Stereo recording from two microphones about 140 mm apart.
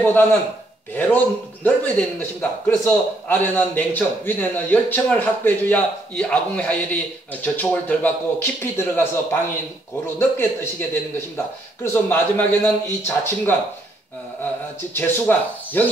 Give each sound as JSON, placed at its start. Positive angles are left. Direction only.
{"t": 0.0, "sound": "a man's voice", "side_deg": 15}
{"t": 11.8, "sound": "a man's voice", "side_deg": 15}
{"t": 15.0, "sound": "a man's voice", "side_deg": 15}